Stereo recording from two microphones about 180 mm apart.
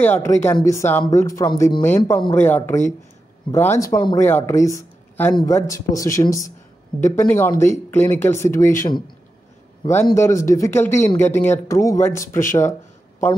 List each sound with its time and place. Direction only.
0.0 s speech: 10° left (ahead or behind)
1.8 s speech: 15° left (ahead or behind)